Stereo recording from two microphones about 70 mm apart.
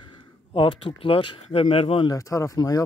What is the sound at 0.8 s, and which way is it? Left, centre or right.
Speech, left.